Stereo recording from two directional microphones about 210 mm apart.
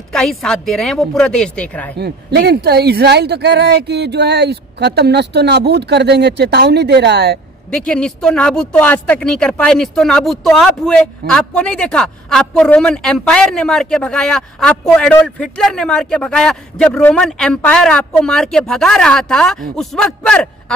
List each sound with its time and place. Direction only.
0.1 s speech: centre (ahead or behind)
2.0 s speech: 50° right (ahead or behind)
7.7 s speech: 5° left (ahead or behind)